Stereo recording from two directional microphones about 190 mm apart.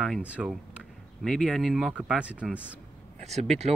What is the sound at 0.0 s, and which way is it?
Speech, centre (ahead or behind).